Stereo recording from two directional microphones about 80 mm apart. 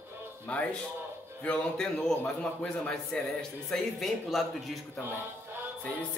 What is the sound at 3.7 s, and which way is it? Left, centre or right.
A man's voice, centre.